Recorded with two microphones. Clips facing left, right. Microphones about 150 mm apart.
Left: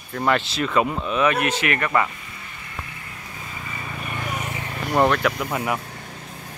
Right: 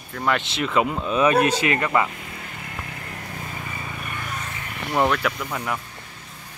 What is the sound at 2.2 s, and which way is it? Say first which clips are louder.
Vehicle: right 4 dB; 50° right (ahead or behind).